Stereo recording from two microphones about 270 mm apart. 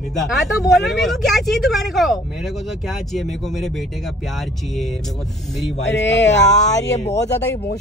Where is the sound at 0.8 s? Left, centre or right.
Centre.